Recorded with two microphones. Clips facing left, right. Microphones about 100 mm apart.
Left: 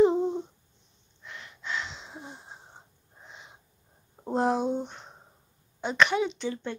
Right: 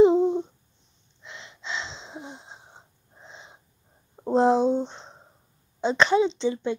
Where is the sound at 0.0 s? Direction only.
15° right (ahead or behind).